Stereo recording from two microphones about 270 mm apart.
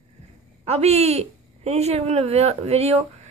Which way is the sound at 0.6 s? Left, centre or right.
Right.